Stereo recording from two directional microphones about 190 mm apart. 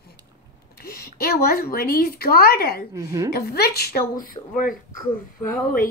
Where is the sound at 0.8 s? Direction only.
55° left (ahead or behind).